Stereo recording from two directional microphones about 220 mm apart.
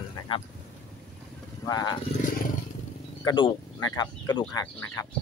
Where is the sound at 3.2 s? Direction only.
20° left (ahead or behind).